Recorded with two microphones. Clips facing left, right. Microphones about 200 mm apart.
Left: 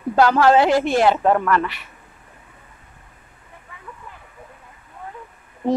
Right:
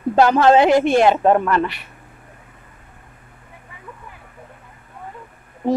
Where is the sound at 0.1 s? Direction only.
20° right (ahead or behind).